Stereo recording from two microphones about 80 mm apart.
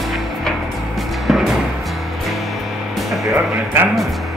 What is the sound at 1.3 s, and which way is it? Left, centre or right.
Music, centre.